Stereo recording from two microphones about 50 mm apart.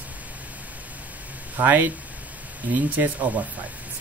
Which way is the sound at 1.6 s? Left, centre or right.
Right.